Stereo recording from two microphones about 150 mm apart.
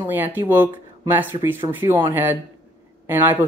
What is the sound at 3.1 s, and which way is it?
Speech, 15° right (ahead or behind).